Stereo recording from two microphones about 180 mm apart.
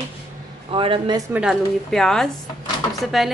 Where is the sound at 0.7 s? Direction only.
30° right (ahead or behind).